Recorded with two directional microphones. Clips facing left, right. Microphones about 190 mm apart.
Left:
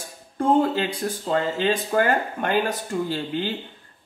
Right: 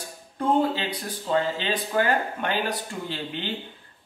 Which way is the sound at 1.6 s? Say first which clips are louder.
Left 4 dB; 45° left (ahead or behind).